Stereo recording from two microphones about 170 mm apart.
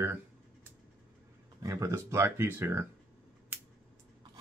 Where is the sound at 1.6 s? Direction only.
20° right (ahead or behind).